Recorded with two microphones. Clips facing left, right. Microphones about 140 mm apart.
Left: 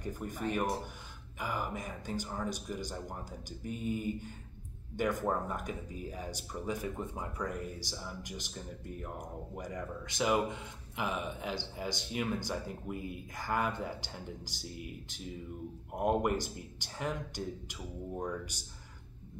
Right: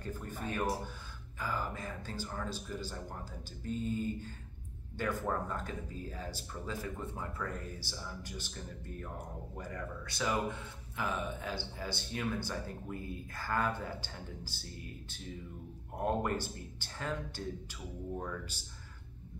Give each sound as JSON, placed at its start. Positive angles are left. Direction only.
{"t": 0.0, "sound": "speech", "side_deg": 15}